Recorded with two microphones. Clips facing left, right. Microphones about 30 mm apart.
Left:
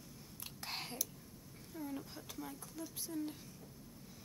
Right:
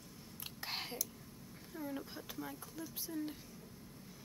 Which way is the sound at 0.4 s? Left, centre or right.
Centre.